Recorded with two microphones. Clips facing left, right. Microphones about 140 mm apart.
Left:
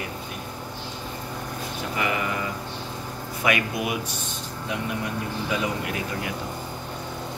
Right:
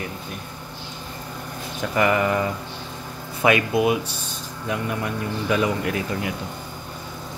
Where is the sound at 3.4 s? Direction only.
30° right (ahead or behind).